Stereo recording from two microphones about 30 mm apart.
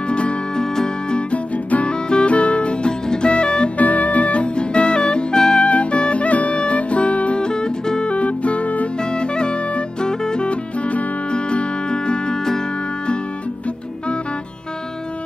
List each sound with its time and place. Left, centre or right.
0.1 s music: left
0.6 s music: left
1.3 s music: left
1.9 s music: left
3.7 s music: left
5.6 s music: left
7.3 s music: left
8.1 s music: left
9.1 s music: left
10.5 s music: left
11.3 s music: left